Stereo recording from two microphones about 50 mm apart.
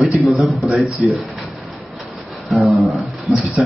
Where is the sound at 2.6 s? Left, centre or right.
Centre.